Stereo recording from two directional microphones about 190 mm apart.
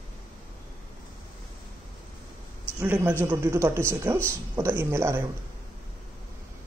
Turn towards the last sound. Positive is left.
turn(degrees=-15)  # may be behind; listen again after turning